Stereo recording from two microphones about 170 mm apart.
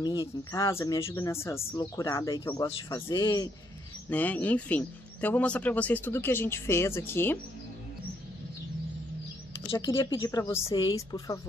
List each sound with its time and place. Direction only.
0.0 s speech: 20° left (ahead or behind)
4.1 s speech: 10° left (ahead or behind)
9.7 s speech: 20° left (ahead or behind)